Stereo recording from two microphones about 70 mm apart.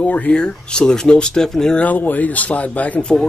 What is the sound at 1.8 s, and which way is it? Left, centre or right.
Speech, left.